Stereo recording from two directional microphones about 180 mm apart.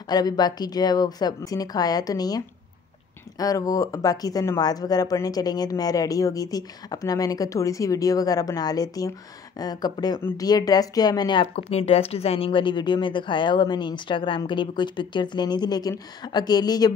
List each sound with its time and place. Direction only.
0.1 s speech: 20° left (ahead or behind)